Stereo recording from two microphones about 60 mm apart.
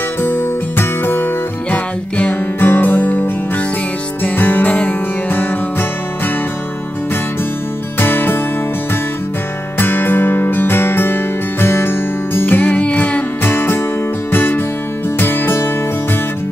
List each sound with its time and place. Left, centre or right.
0.2 s music: left
1.7 s music: left
2.6 s music: left
8.0 s music: left
9.8 s music: left